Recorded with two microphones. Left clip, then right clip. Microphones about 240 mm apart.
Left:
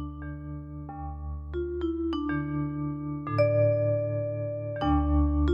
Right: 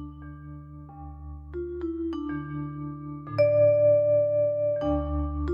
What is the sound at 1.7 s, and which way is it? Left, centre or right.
Music, centre.